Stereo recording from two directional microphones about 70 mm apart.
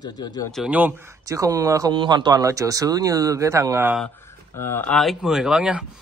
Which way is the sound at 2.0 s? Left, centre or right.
Right.